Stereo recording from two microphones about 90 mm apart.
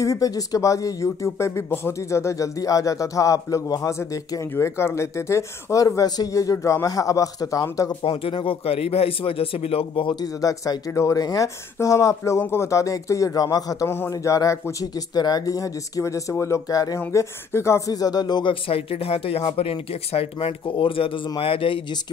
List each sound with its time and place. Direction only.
0.0 s speech: 40° left (ahead or behind)
8.0 s speech: 90° left
10.2 s speech: 40° left (ahead or behind)
13.8 s speech: 25° left (ahead or behind)
14.1 s speech: 40° left (ahead or behind)
17.1 s speech: 30° left (ahead or behind); by 18.5 s 50° left (ahead or behind)
18.5 s speech: 90° left